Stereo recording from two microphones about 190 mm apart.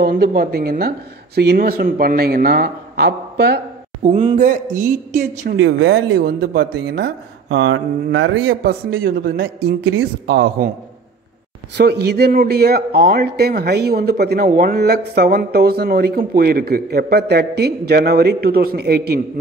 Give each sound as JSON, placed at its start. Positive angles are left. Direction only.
{"t": 0.0, "sound": "speech", "side_deg": -50}
{"t": 4.0, "sound": "speech", "side_deg": -30}
{"t": 4.4, "sound": "speech", "side_deg": -40}
{"t": 5.6, "sound": "speech", "side_deg": -70}
{"t": 9.4, "sound": "speech", "side_deg": -75}
{"t": 11.7, "sound": "speech", "side_deg": -60}